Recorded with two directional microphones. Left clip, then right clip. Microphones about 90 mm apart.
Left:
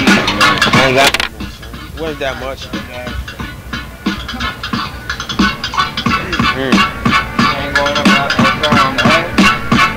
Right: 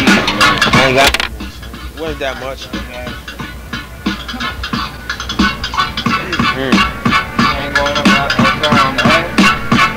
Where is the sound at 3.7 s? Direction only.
25° right (ahead or behind).